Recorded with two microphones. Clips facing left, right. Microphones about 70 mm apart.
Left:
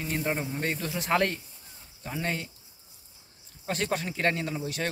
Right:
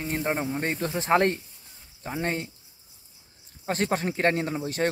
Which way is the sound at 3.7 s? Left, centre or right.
Right.